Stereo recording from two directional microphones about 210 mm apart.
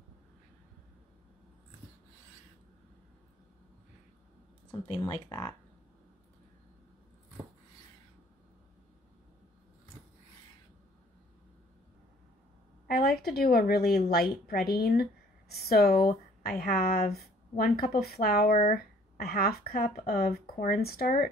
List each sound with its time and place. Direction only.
4.6 s speech: 15° left (ahead or behind)
12.8 s a woman's voice: 45° left (ahead or behind)